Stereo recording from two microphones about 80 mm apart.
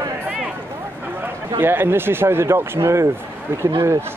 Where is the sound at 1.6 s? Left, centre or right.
Right.